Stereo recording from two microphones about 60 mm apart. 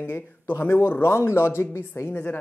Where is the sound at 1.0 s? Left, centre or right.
Left.